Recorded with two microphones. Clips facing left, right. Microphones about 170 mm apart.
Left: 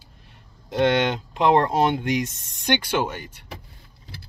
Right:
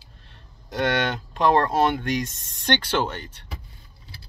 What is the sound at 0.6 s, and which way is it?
Speech, 20° left (ahead or behind).